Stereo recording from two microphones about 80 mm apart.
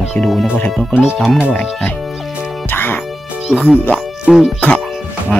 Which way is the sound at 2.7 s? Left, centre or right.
Left.